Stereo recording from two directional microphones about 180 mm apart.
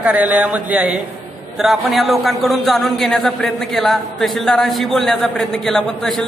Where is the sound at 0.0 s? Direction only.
5° right (ahead or behind).